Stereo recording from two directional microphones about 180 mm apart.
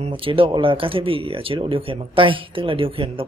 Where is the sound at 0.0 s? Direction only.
30° right (ahead or behind).